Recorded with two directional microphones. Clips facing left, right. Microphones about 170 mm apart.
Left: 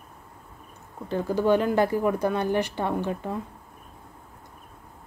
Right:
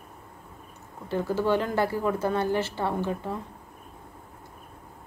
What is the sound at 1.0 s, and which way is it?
Speech, 15° left (ahead or behind).